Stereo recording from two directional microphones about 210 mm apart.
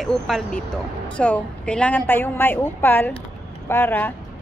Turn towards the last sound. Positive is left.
turn(degrees=10)  # may be behind; listen again after turning